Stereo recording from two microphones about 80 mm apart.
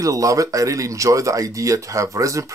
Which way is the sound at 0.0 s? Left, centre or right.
Right.